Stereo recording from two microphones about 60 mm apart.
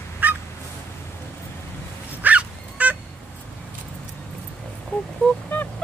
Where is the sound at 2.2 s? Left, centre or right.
Right.